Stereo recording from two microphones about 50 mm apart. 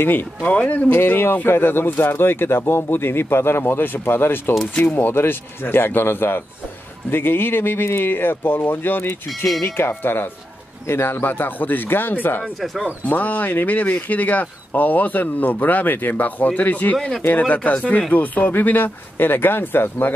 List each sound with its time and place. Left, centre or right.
0.0 s speech: left
0.8 s speech: left
11.2 s speech: left